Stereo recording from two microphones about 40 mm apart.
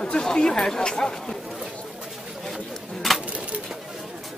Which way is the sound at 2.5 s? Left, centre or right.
Centre.